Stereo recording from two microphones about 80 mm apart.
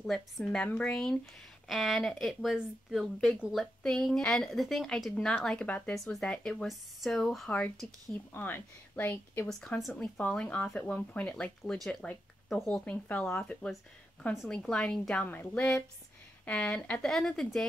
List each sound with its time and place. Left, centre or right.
0.0 s speech: centre
5.9 s speech: centre
8.3 s speech: left
9.5 s speech: centre
12.8 s speech: centre
15.2 s speech: left
17.1 s speech: centre